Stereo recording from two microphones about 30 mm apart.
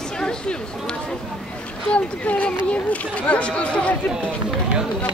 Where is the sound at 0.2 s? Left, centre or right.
Left.